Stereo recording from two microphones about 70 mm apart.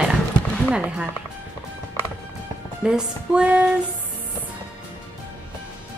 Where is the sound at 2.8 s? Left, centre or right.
Centre.